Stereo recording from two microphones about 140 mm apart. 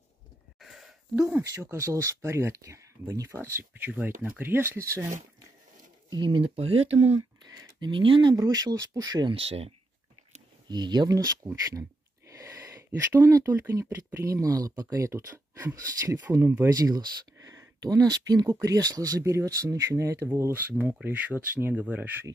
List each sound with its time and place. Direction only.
0.6 s a sound: centre (ahead or behind)
1.1 s speech: 20° right (ahead or behind)
6.0 s speech: 35° right (ahead or behind)
7.2 s speech: 25° right (ahead or behind); by 9.8 s 45° right (ahead or behind)
10.7 s speech: 30° right (ahead or behind)
16.7 s speech: 25° right (ahead or behind); by 22.1 s 10° right (ahead or behind)